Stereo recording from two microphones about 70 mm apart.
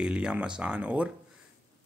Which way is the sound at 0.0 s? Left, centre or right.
Centre.